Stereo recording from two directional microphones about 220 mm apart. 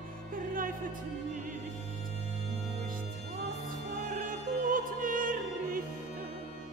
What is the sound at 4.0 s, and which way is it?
Opera, 40° right (ahead or behind).